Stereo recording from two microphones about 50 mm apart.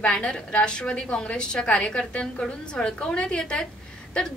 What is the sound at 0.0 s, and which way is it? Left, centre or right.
A woman's voice, centre.